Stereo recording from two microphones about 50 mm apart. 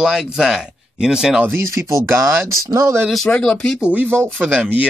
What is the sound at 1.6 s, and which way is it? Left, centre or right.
Speech, right.